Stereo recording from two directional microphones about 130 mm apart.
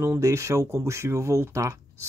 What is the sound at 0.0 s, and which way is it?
Speech, 20° right (ahead or behind).